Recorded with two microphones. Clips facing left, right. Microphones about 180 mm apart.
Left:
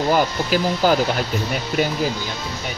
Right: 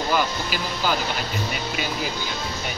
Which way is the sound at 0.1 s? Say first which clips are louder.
Left 5 dB; 45° left (ahead or behind).